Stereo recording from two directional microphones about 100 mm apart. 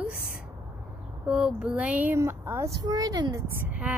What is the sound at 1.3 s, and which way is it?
Speech, 10° right (ahead or behind).